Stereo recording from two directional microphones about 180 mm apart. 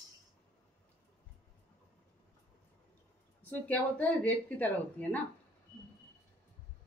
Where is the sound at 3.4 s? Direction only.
10° left (ahead or behind).